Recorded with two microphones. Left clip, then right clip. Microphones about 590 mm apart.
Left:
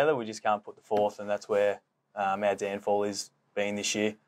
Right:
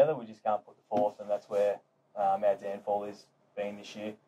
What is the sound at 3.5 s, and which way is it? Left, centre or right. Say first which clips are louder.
Speech: left 7 dB; left.